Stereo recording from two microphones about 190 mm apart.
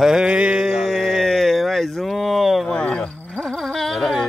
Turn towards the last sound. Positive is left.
turn(degrees=0)  # may be behind; listen again after turning